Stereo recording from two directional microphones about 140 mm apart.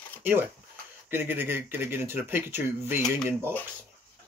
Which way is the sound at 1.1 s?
15° right (ahead or behind).